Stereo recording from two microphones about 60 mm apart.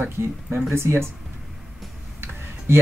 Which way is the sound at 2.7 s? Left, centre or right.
Right.